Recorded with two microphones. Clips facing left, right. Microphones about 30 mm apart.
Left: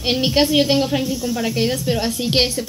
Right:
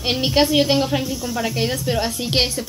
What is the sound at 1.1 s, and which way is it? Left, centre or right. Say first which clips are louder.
Speech: left 3 dB; left.